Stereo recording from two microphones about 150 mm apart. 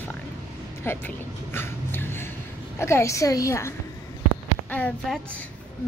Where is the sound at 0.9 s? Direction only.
15° left (ahead or behind).